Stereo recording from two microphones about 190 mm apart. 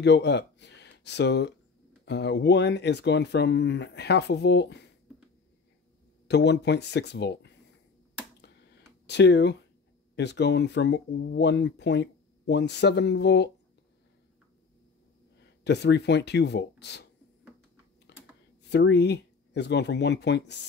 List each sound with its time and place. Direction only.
0.0 s speech: 65° left (ahead or behind)
6.2 s speech: 60° left (ahead or behind)
9.0 s speech: 65° left (ahead or behind)
15.6 s speech: 65° left (ahead or behind)
18.6 s speech: 65° left (ahead or behind)